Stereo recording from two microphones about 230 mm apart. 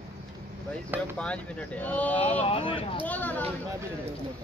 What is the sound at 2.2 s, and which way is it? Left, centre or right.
Speech, left.